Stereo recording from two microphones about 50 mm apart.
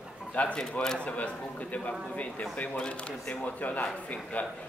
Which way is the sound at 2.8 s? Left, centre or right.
Left.